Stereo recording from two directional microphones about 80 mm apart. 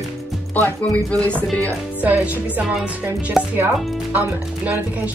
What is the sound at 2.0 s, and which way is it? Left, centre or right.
Music, centre.